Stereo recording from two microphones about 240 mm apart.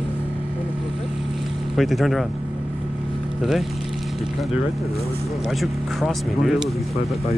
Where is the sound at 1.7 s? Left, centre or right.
Centre.